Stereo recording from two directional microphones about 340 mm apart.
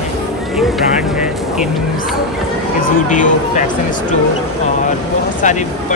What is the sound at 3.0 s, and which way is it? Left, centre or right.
Speech, left.